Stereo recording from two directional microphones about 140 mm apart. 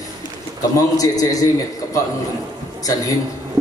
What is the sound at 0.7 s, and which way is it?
A man's voice, 25° left (ahead or behind).